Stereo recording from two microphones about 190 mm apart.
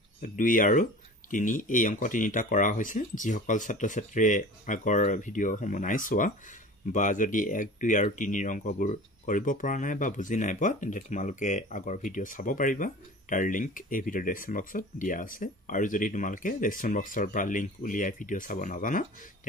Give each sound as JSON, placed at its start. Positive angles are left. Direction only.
{"t": 0.2, "sound": "speech", "side_deg": 45}